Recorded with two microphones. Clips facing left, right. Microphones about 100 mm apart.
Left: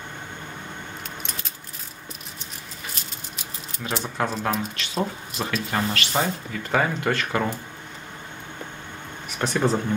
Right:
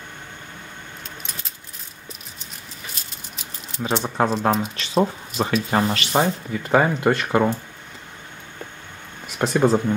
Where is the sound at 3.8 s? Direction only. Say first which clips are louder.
Right 5 dB; 30° right (ahead or behind).